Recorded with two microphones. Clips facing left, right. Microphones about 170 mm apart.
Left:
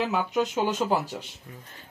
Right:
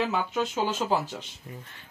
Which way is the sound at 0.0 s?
10° left (ahead or behind).